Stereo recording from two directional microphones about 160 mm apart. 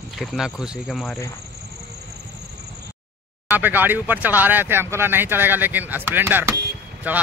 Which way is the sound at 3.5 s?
10° right (ahead or behind).